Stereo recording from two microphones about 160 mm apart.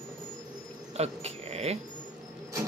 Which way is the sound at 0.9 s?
40° right (ahead or behind).